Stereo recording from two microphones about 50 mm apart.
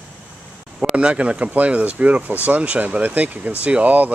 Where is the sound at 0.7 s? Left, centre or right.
Right.